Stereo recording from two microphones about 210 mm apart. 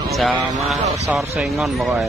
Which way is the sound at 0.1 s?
Centre (ahead or behind).